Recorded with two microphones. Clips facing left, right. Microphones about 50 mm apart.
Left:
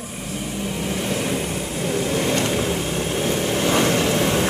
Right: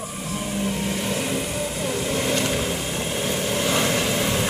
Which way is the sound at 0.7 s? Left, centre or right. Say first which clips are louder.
Left 1 dB; centre.